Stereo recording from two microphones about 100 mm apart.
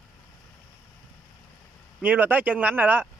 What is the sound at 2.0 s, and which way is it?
Speech, 20° right (ahead or behind).